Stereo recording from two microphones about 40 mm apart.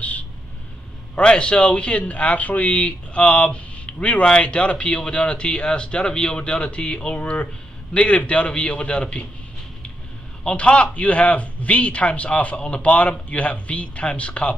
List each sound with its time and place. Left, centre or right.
1.1 s a man's voice: left
10.4 s speech: left